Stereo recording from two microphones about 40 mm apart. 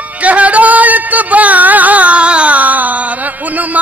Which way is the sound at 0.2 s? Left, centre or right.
Right.